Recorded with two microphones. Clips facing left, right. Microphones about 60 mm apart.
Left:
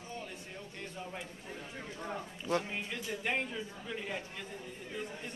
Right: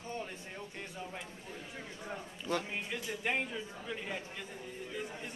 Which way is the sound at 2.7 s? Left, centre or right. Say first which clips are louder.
Even; centre.